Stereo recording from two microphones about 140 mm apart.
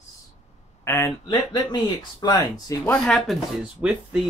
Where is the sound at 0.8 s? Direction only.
20° left (ahead or behind).